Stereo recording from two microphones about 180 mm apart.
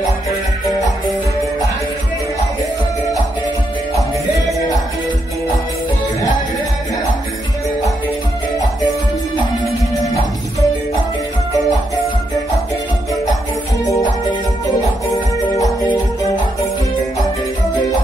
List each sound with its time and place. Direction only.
10.0 s music: 20° left (ahead or behind)
14.7 s music: 15° left (ahead or behind)